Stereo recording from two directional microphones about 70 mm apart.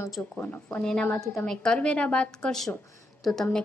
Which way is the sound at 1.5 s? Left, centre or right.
Centre.